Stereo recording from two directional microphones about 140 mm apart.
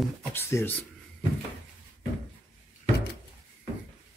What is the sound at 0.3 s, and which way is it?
Speech, 15° left (ahead or behind).